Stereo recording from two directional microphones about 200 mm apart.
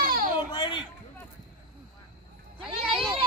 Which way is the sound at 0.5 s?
20° left (ahead or behind).